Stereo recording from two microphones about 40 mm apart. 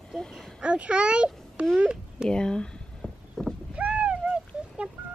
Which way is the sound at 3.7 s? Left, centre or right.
Right.